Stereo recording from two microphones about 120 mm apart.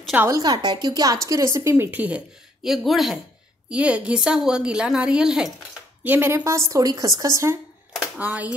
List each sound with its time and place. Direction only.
0.3 s a woman's voice: 35° right (ahead or behind); by 5.5 s 5° right (ahead or behind)
6.0 s a woman's voice: 15° right (ahead or behind)
8.2 s a woman's voice: 10° right (ahead or behind)